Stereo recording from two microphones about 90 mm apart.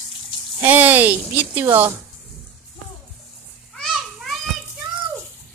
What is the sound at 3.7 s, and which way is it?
Children playing, 5° left (ahead or behind).